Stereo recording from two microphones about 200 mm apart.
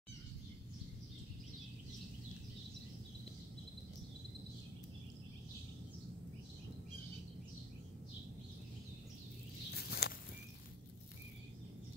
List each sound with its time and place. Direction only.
9.8 s walk: 55° left (ahead or behind)